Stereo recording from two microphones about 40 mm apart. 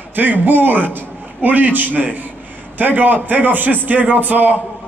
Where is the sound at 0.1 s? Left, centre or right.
Right.